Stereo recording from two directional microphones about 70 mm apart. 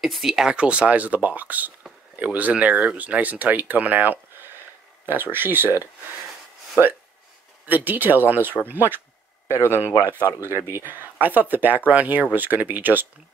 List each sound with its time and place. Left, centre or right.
0.0 s speech: centre; by 5.9 s right
7.6 s speech: right